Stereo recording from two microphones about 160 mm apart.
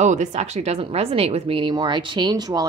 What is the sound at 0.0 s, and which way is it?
Speech, 45° right (ahead or behind).